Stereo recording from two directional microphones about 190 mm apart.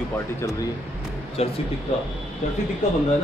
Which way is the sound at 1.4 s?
30° left (ahead or behind).